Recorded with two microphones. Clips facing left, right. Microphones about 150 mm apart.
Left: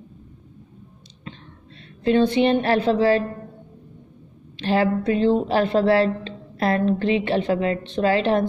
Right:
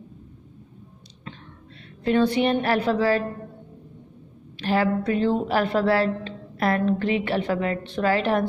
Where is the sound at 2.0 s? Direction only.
25° left (ahead or behind).